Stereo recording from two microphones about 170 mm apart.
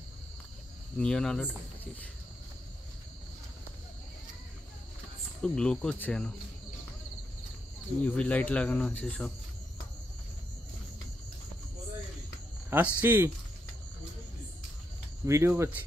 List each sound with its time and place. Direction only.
0.9 s speech: 5° left (ahead or behind)
5.4 s speech: 5° left (ahead or behind)
8.0 s speech: 10° left (ahead or behind)
12.6 s cricket: 10° right (ahead or behind)
15.2 s cricket: 15° right (ahead or behind)